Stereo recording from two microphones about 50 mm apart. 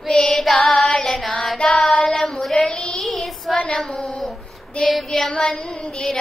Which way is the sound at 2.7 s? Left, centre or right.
Left.